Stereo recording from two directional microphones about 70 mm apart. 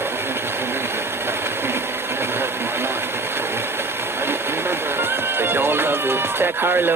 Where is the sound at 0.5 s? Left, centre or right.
Right.